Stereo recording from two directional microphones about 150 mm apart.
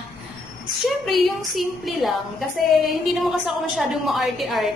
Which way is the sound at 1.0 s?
Centre (ahead or behind).